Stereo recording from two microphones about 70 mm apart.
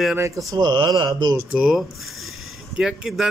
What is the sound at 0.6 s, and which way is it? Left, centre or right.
Speech, right.